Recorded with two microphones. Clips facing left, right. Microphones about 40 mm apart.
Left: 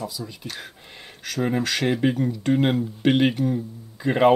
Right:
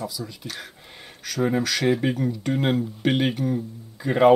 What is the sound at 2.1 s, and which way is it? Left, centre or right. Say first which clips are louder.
Speech: left 3 dB; centre.